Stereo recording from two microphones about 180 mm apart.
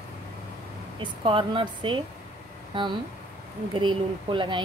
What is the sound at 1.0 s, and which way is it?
Speech, 30° right (ahead or behind).